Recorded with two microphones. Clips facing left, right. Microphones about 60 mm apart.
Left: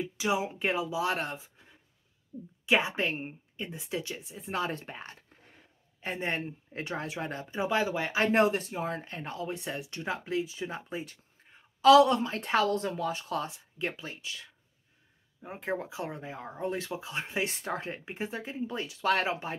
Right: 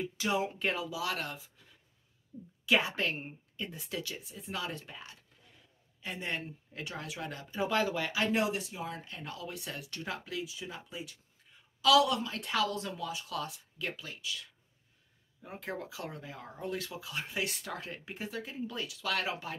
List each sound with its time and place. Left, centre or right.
0.0 s a woman's voice: centre; by 8.3 s left
8.3 s speech: left